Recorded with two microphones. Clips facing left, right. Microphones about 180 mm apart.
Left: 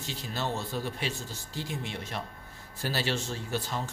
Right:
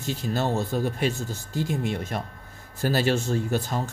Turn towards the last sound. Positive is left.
turn(degrees=-45)  # may be behind; listen again after turning